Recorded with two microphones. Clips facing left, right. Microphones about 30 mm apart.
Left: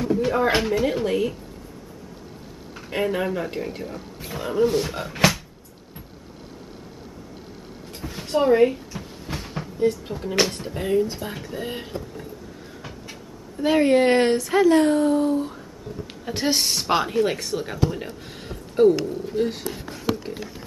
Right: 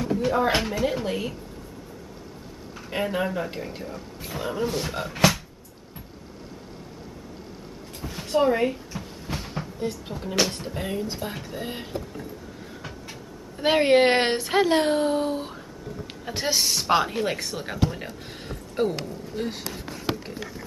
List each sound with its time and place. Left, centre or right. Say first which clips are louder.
0.0 s speech: left 2 dB; centre
2.7 s a woman's voice: left 3 dB; centre
8.0 s a sound: even; centre
10.4 s a woman's voice: left 2 dB; centre
13.6 s speech: left 1 dB; right
16.3 s a woman's voice: left 2 dB; centre
18.2 s a sound: left 1 dB; centre
19.7 s speech: left 1 dB; left